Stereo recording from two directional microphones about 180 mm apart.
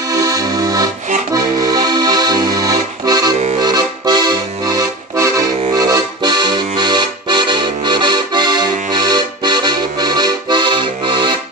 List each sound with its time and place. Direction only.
0.1 s accordion: 20° right (ahead or behind)